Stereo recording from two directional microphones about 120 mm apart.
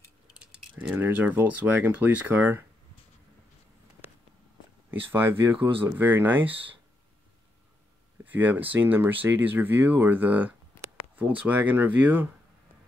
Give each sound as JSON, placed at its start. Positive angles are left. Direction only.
{"t": 0.3, "sound": "speech", "side_deg": -10}
{"t": 5.0, "sound": "speech", "side_deg": -15}
{"t": 8.3, "sound": "speech", "side_deg": -15}